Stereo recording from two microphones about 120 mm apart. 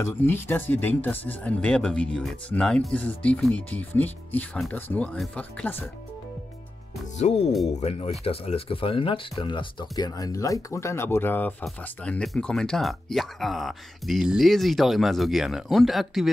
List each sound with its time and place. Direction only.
0.0 s speech: 20° left (ahead or behind)
5.1 s speech: centre (ahead or behind)
5.4 s speech: 15° left (ahead or behind)
7.2 s speech: 65° left (ahead or behind); by 11.5 s 15° left (ahead or behind)
11.6 s speech: 5° left (ahead or behind)